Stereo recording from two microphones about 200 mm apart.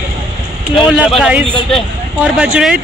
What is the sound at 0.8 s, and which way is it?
Speech, 5° right (ahead or behind).